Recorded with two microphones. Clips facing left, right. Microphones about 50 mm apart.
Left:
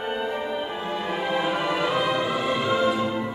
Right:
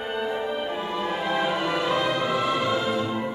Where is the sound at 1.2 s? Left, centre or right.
Centre.